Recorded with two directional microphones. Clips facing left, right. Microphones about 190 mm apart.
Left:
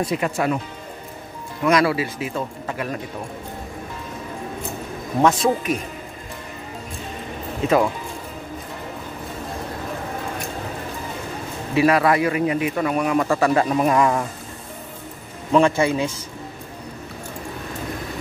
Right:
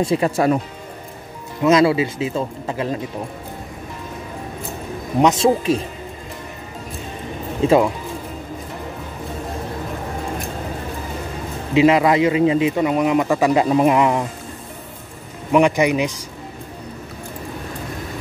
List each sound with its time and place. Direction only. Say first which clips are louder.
0.0 s speech: right 5 dB; 30° right (ahead or behind)
1.6 s a man's voice: right 4 dB; 25° right (ahead or behind)
5.2 s a man's voice: right 3 dB; 25° right (ahead or behind)
7.6 s a man's voice: right 4 dB; 30° right (ahead or behind)
11.7 s a man's voice: right 3 dB; 20° right (ahead or behind)
15.5 s speech: right 2 dB; 15° right (ahead or behind)